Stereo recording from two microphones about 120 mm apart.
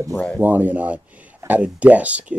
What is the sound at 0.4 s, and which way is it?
Speech, 15° right (ahead or behind).